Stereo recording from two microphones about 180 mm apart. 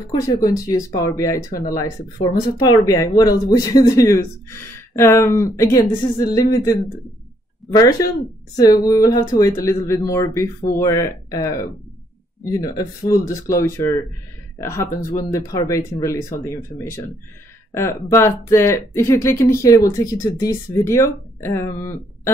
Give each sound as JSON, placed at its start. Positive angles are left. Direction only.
{"t": 0.1, "sound": "speech", "side_deg": 20}
{"t": 7.7, "sound": "speech", "side_deg": 20}